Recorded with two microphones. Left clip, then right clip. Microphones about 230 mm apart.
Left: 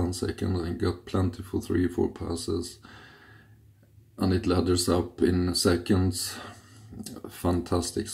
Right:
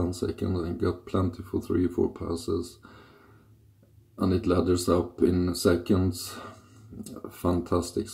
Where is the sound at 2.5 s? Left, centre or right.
Left.